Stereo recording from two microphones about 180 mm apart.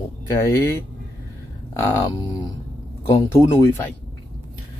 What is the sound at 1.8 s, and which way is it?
Speech, 20° left (ahead or behind).